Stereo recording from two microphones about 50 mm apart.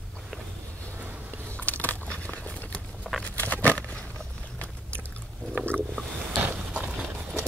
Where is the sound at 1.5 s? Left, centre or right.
Left.